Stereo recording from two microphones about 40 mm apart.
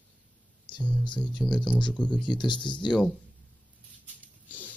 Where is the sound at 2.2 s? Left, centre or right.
Centre.